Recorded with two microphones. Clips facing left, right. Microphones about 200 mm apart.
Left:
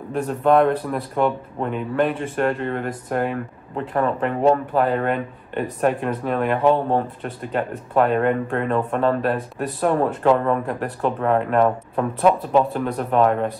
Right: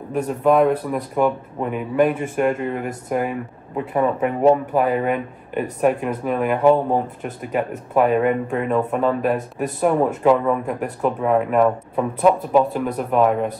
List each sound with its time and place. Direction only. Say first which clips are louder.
0.1 s speech: even; 5° right (ahead or behind)